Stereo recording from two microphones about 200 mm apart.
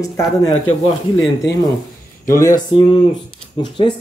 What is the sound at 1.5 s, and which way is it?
Speech, 60° left (ahead or behind).